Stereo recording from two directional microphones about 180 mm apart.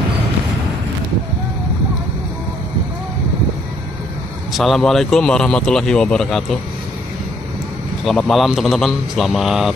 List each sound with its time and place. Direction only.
4.5 s speech: centre (ahead or behind)
8.0 s speech: centre (ahead or behind)